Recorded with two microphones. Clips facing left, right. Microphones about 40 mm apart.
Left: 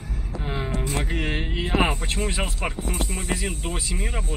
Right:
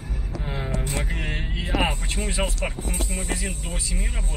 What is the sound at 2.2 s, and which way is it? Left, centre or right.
Speech, centre.